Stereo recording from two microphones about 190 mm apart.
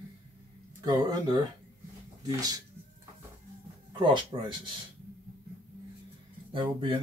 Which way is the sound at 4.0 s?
25° right (ahead or behind).